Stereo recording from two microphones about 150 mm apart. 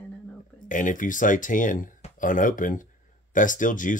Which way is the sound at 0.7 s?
60° left (ahead or behind).